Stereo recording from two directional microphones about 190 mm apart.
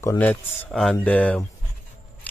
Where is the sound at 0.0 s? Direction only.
10° left (ahead or behind).